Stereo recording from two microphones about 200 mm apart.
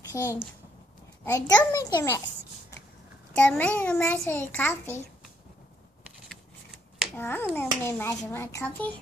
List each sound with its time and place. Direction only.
0.1 s a child's voice: 20° left (ahead or behind)
3.3 s a child's voice: 5° left (ahead or behind)
7.2 s a child's voice: 10° left (ahead or behind)